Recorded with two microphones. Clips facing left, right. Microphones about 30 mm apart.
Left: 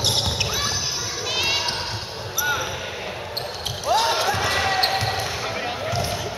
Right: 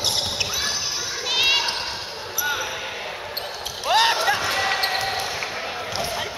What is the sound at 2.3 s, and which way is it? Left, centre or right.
Basketball bounce, centre.